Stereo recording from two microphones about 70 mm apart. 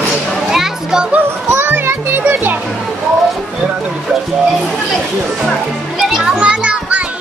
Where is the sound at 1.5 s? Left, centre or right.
Right.